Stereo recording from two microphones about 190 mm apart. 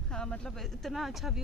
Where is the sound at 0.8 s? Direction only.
Centre (ahead or behind).